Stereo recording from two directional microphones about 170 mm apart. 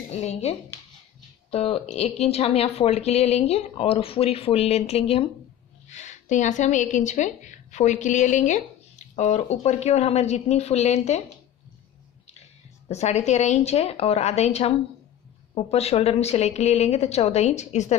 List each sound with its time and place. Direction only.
0.1 s a woman's voice: 40° left (ahead or behind)
12.3 s a woman's voice: 40° left (ahead or behind)